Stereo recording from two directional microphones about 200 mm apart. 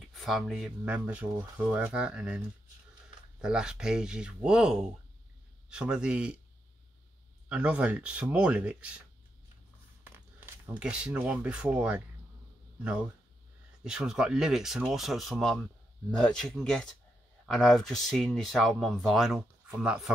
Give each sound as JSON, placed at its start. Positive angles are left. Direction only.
{"t": 0.1, "sound": "speech", "side_deg": 0}
{"t": 7.4, "sound": "speech", "side_deg": -5}
{"t": 10.1, "sound": "speech", "side_deg": -10}
{"t": 13.8, "sound": "speech", "side_deg": -5}